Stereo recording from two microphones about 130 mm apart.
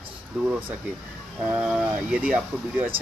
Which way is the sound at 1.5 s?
10° right (ahead or behind).